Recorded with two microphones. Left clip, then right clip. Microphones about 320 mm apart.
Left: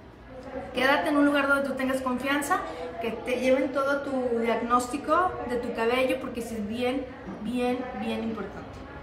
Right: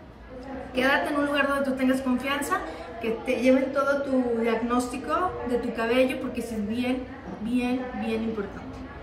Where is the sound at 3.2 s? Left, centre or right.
Centre.